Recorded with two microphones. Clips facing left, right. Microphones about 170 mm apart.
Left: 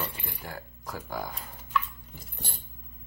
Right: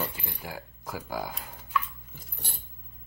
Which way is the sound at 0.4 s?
5° right (ahead or behind).